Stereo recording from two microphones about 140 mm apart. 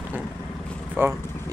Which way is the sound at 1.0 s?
20° right (ahead or behind).